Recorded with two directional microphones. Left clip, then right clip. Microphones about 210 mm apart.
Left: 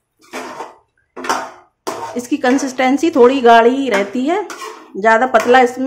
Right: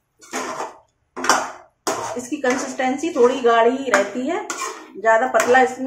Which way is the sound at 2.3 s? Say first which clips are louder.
Left 7 dB; 50° left (ahead or behind).